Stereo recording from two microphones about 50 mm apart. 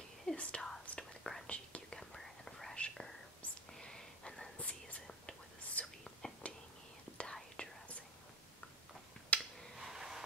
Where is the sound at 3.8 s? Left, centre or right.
Centre.